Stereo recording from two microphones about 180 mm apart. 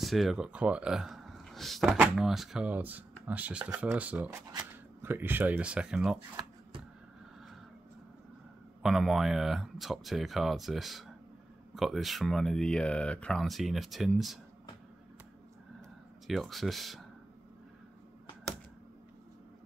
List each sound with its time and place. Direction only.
0.0 s speech: centre (ahead or behind)
8.8 s speech: centre (ahead or behind)
16.3 s speech: centre (ahead or behind)